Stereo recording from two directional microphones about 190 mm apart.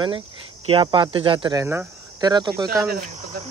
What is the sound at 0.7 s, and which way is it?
Speech, 30° right (ahead or behind).